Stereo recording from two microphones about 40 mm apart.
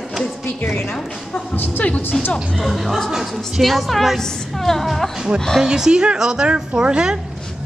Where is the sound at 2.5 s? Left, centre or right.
Centre.